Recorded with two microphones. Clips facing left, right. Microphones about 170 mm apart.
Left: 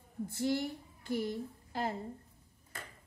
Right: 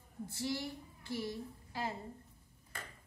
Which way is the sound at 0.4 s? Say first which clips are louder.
Left 6 dB; 55° left (ahead or behind).